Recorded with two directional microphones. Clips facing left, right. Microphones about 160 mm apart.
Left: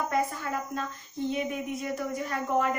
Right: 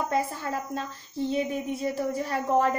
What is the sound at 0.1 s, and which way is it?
Speech, 30° right (ahead or behind).